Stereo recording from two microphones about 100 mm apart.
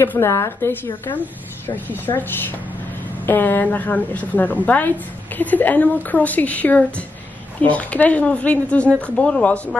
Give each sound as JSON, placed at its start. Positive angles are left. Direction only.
{"t": 0.0, "sound": "a woman's voice", "side_deg": 25}